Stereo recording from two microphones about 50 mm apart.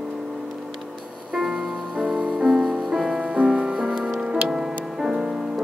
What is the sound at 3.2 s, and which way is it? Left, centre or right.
Music, right.